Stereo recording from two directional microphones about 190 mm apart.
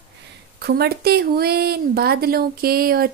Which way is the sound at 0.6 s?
55° right (ahead or behind).